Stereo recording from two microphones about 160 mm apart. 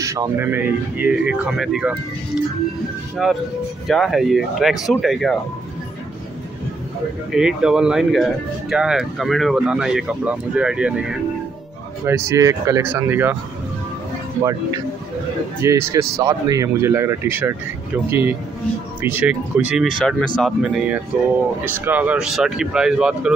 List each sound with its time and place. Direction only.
0.0 s speech: 20° right (ahead or behind); by 2.0 s 5° right (ahead or behind)
3.2 s speech: centre (ahead or behind)
7.3 s speech: 5° right (ahead or behind)
12.1 s speech: 20° right (ahead or behind)
15.6 s speech: 20° right (ahead or behind); by 20.5 s 5° left (ahead or behind)
20.6 s speech: 5° right (ahead or behind)